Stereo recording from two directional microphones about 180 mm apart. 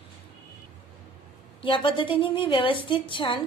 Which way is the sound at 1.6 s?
30° left (ahead or behind).